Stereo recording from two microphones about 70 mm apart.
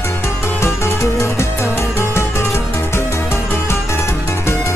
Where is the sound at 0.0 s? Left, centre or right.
Left.